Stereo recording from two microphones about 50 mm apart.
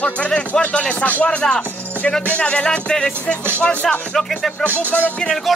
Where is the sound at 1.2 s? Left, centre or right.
Centre.